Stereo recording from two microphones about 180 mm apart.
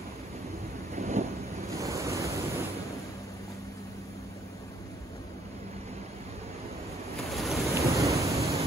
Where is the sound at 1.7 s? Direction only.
15° right (ahead or behind).